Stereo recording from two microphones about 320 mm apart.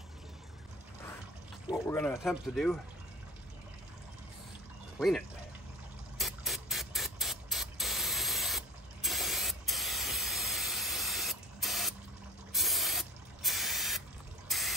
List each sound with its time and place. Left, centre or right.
1.9 s speech: centre
4.9 s speech: centre
6.1 s spray: centre
14.5 s fill: centre